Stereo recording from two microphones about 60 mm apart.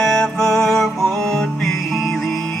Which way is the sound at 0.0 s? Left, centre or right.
Centre.